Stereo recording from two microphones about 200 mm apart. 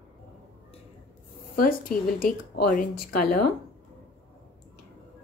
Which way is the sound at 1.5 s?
45° left (ahead or behind).